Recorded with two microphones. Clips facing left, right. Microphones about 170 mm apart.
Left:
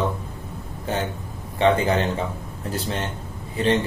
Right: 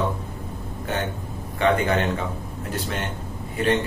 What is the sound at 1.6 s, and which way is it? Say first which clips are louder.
A man's voice: left 2 dB; 30° left (ahead or behind).